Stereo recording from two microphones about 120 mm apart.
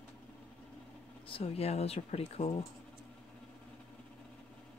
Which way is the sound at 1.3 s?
55° left (ahead or behind).